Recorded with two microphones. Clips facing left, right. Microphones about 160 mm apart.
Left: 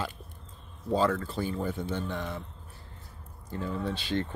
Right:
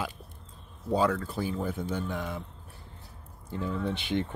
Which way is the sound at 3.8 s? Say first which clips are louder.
Right 1 dB; 15° right (ahead or behind).